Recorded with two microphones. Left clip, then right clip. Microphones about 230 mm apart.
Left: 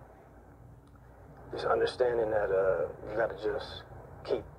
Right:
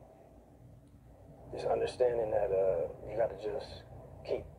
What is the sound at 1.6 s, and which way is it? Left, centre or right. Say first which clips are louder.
Speech: left 2 dB; left.